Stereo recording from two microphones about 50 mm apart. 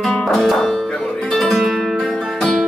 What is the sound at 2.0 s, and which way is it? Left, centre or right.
Music, centre.